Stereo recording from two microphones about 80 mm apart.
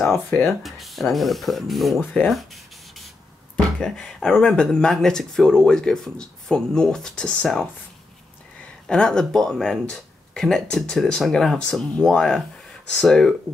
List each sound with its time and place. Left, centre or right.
0.5 s speech: centre
8.8 s speech: centre